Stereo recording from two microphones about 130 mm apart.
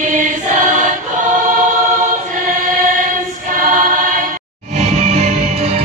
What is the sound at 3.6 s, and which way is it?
Choir, 90° right.